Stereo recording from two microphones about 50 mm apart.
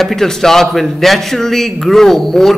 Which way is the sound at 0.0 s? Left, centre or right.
Centre.